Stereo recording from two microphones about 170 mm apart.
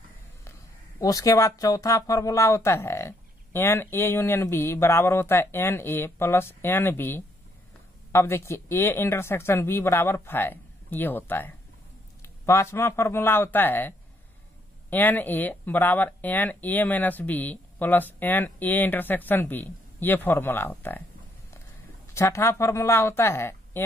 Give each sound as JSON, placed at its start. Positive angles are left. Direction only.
{"t": 1.0, "sound": "speech", "side_deg": 20}
{"t": 22.0, "sound": "speech", "side_deg": 15}